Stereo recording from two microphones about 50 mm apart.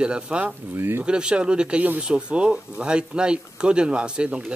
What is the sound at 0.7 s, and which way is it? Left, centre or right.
Speech, right.